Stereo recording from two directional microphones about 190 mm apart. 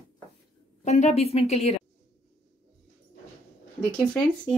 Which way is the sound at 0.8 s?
35° left (ahead or behind).